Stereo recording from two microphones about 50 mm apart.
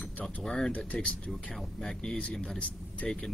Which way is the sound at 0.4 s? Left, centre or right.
Centre.